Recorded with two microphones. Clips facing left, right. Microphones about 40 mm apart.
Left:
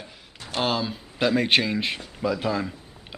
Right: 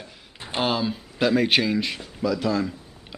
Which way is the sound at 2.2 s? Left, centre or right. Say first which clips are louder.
Right 2 dB; centre.